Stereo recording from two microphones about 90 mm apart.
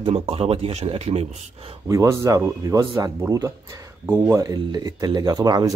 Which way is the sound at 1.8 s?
35° right (ahead or behind).